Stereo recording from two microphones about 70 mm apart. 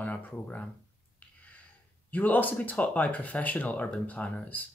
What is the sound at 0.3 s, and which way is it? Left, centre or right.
Speech, centre.